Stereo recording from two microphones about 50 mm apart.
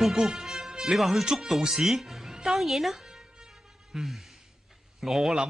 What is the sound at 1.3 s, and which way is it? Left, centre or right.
A woman's voice, centre.